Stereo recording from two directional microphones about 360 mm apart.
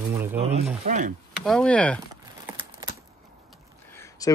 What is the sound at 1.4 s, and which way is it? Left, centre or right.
Speech, centre.